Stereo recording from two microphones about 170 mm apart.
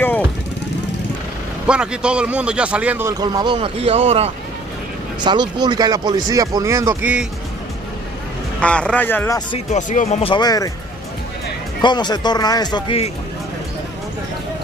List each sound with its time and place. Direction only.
1.7 s speech: 5° right (ahead or behind)
3.1 s speech: 25° right (ahead or behind)
8.5 s speech: 5° left (ahead or behind)
9.7 s speech: 50° left (ahead or behind)
10.2 s a man's voice: 25° left (ahead or behind)
11.8 s a man's voice: 25° left (ahead or behind)